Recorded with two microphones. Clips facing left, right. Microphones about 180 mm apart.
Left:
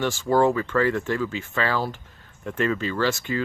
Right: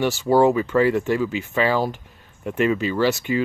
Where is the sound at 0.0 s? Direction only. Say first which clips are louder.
Right 3 dB; 10° right (ahead or behind).